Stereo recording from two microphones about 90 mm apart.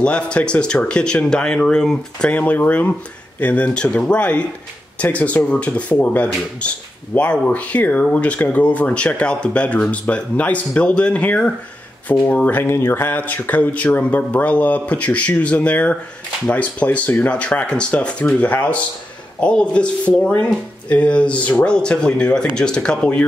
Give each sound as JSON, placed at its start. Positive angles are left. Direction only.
{"t": 0.0, "sound": "speech", "side_deg": 10}